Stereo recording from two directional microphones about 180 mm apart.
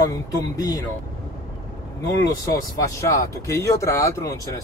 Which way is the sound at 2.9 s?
15° left (ahead or behind).